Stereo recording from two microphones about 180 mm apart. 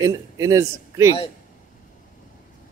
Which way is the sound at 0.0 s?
15° right (ahead or behind).